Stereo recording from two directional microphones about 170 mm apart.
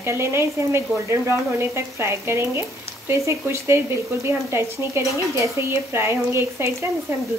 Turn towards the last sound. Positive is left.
turn(degrees=-15)  # may be behind; listen again after turning